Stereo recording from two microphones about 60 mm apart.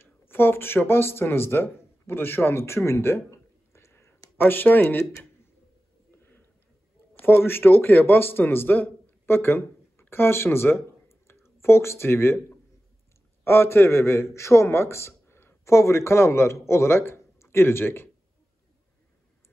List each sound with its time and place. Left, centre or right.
0.0 s speech: left
4.4 s speech: left
6.1 s a sound: left
7.2 s a man's voice: left